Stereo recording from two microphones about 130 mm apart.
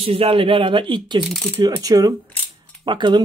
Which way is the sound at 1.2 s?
Centre (ahead or behind).